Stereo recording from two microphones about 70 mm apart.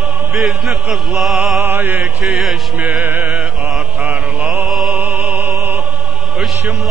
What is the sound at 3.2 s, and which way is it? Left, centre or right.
Music, centre.